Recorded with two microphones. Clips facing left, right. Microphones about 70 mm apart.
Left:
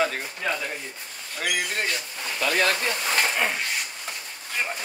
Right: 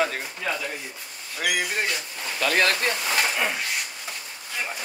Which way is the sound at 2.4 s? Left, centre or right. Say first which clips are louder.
Right 1 dB; right.